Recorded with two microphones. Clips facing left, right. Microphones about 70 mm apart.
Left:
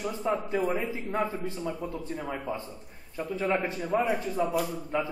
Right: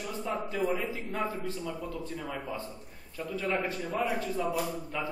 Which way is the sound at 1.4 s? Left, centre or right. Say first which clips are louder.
Left 3 dB; left.